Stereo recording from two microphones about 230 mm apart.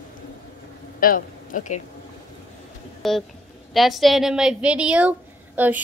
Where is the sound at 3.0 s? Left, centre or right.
Centre.